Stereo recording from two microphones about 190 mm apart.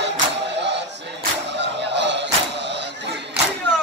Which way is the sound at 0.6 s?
65° right (ahead or behind).